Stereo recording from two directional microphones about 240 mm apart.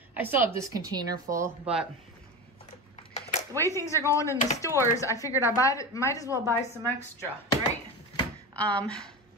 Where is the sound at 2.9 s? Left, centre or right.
Left.